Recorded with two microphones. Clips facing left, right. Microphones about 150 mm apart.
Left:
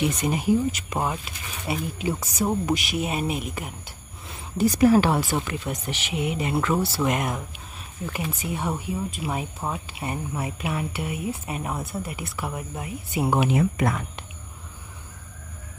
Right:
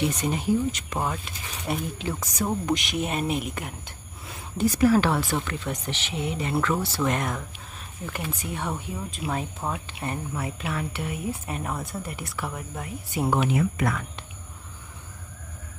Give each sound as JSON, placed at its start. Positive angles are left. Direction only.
{"t": 0.0, "sound": "speech", "side_deg": 10}
{"t": 4.3, "sound": "a sound", "side_deg": 0}
{"t": 4.7, "sound": "speech", "side_deg": 15}
{"t": 10.0, "sound": "speech", "side_deg": 15}
{"t": 13.5, "sound": "speech", "side_deg": 25}